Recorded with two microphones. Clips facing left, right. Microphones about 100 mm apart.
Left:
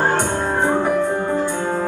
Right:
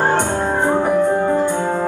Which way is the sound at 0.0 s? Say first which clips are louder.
Right 2 dB; 15° right (ahead or behind).